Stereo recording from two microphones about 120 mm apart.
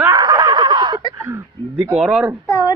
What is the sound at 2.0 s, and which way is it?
Speech, 5° right (ahead or behind).